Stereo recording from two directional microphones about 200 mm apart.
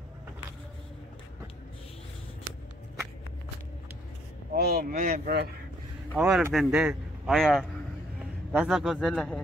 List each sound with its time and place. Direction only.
4.6 s speech: 50° right (ahead or behind)
6.1 s a man's voice: centre (ahead or behind)